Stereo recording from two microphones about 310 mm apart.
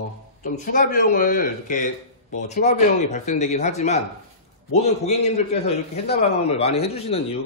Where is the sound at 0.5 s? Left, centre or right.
Left.